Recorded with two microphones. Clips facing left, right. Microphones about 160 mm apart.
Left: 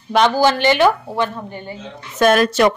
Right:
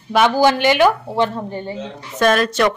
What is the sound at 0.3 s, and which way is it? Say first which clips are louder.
Speech: right 1 dB; 15° right (ahead or behind).